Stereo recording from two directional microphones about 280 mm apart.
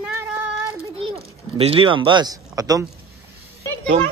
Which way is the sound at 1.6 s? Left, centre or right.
Centre.